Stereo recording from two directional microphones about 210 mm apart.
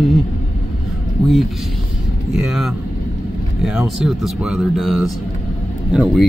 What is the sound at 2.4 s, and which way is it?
Speech, centre (ahead or behind).